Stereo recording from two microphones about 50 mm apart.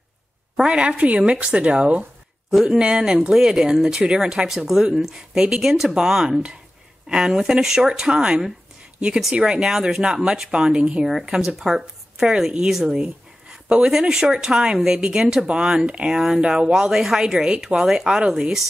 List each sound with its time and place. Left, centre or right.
0.6 s speech: right
2.5 s speech: centre
12.9 s speech: centre